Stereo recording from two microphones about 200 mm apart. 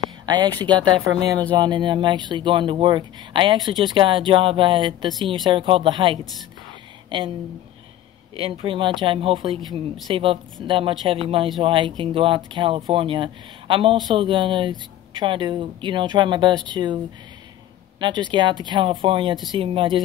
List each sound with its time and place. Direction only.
0.3 s speech: 20° right (ahead or behind)
8.4 s speech: 25° right (ahead or behind)
18.0 s speech: 25° right (ahead or behind)